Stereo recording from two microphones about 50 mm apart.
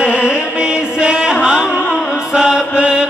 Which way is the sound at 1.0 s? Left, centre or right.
Right.